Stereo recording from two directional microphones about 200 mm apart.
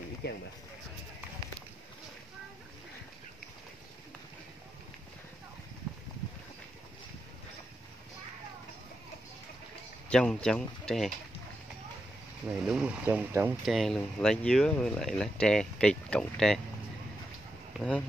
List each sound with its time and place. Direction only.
0.2 s speech: 55° left (ahead or behind)
10.0 s speech: 5° left (ahead or behind)
12.6 s speech: 5° right (ahead or behind)
17.7 s speech: 5° left (ahead or behind)